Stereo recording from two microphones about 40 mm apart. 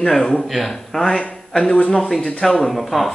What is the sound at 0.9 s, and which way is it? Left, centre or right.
Speech, centre.